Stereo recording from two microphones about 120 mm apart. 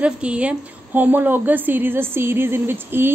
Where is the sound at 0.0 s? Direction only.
10° right (ahead or behind).